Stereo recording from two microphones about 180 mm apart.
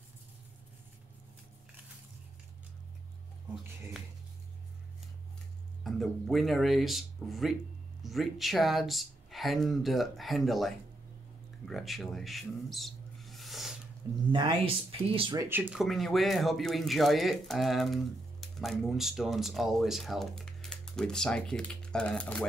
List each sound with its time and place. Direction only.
5.9 s speech: centre (ahead or behind)
11.6 s a sound: centre (ahead or behind)
14.3 s speech: 30° right (ahead or behind)
15.3 s speech: 10° right (ahead or behind); by 22.5 s 5° left (ahead or behind)